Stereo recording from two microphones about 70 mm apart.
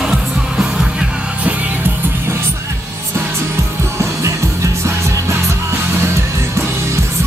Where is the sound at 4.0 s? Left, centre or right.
Right.